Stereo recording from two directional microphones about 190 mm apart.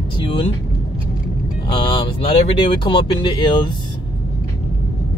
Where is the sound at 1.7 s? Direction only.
25° left (ahead or behind).